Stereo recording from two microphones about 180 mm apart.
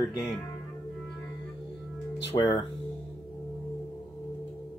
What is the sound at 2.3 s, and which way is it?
Speech, 30° left (ahead or behind).